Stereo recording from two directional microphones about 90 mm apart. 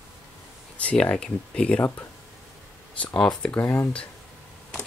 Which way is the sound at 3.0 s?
10° left (ahead or behind).